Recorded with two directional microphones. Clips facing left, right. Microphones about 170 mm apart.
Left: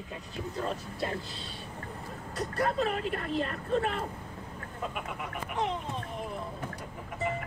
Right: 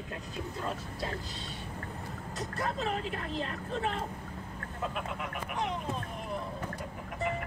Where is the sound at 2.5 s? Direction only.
55° left (ahead or behind).